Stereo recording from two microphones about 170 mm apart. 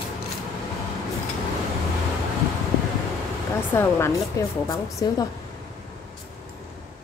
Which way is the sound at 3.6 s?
15° left (ahead or behind).